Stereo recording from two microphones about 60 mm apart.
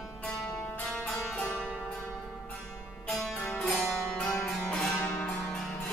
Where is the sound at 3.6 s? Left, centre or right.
Centre.